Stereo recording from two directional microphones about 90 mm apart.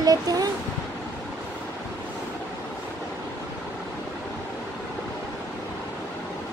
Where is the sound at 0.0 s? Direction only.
45° right (ahead or behind).